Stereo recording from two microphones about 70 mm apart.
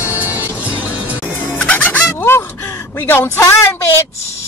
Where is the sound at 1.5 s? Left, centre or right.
Left.